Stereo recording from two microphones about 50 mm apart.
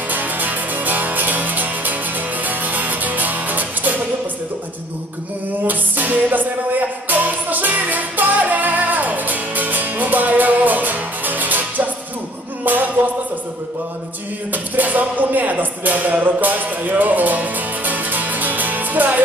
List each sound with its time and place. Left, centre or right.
0.1 s music: right
5.7 s music: right
14.5 s music: right